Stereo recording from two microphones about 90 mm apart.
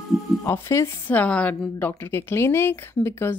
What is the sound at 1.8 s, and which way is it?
Speech, 25° left (ahead or behind).